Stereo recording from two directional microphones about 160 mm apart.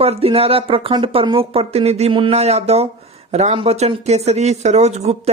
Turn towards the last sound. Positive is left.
turn(degrees=-40)  # may be behind; listen again after turning